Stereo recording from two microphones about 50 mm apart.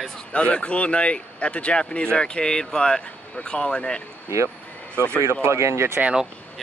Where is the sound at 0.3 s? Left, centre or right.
Left.